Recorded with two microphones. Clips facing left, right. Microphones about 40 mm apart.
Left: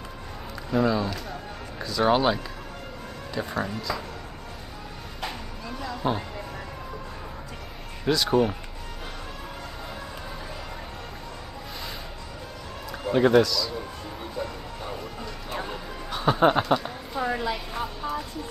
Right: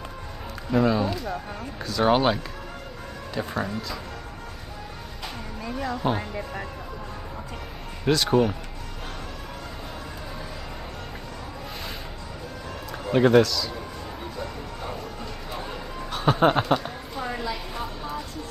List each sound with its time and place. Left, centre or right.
0.7 s speech: centre
5.7 s speech: centre
8.0 s speech: centre
13.1 s speech: centre
14.3 s music: centre
17.1 s a sound: centre